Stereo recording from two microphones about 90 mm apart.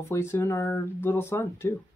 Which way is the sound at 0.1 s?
30° left (ahead or behind).